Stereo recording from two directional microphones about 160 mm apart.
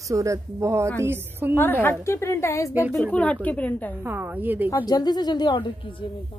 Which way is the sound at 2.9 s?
5° left (ahead or behind).